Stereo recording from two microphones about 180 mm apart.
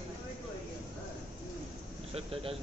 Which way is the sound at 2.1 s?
30° right (ahead or behind).